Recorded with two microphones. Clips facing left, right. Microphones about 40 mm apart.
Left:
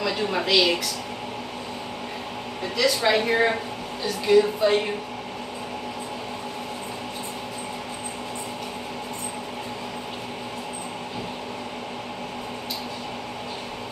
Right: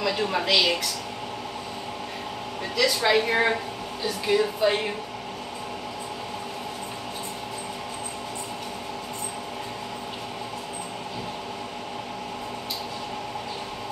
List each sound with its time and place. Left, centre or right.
0.0 s speech: centre
2.7 s speech: centre